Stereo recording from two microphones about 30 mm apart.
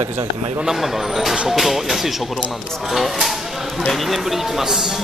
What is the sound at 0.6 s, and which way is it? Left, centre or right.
Speech, centre.